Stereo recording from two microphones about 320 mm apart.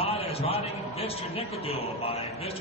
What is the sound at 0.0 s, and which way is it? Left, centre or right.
A man's voice, centre.